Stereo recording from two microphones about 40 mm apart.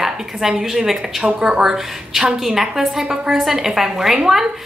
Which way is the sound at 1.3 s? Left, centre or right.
Right.